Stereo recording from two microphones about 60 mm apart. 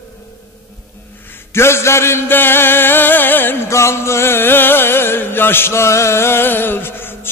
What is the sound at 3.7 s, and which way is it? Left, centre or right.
Music, left.